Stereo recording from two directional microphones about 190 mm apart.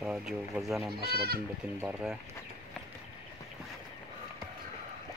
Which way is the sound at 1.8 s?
5° right (ahead or behind).